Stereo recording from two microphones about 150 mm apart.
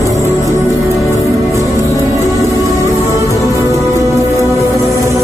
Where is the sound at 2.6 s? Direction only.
20° right (ahead or behind).